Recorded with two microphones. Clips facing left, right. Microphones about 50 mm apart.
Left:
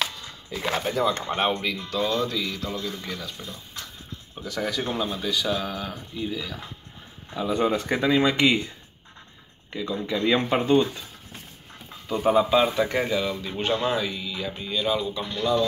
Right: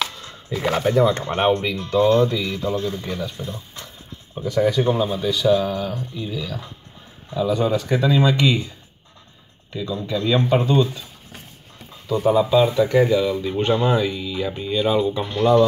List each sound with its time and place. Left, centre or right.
0.5 s a man's voice: right
4.4 s speech: centre
7.3 s speech: left
9.7 s speech: left
12.1 s speech: left; by 15.2 s right
15.2 s a man's voice: right